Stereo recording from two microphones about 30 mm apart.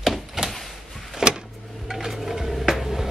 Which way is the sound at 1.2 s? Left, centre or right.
Centre.